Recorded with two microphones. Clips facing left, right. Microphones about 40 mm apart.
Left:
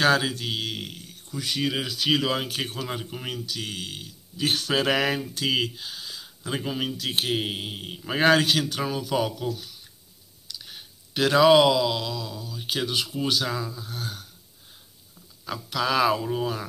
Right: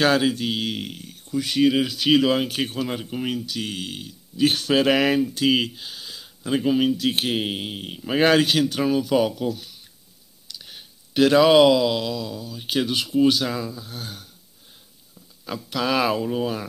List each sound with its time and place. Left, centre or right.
0.0 s mantra: centre
0.3 s speech: right
1.6 s mantra: centre
1.9 s speech: right
2.9 s mantra: centre
3.4 s speech: right
6.2 s speech: centre
7.1 s mantra: right
8.5 s speech: right
9.4 s mantra: centre
10.6 s clicking: centre
11.2 s mantra: centre
12.4 s speech: centre
15.4 s mantra: centre